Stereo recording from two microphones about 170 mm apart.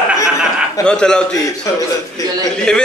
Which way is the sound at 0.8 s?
5° left (ahead or behind).